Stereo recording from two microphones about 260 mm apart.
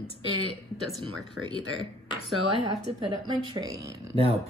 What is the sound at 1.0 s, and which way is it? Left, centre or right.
Speech, right.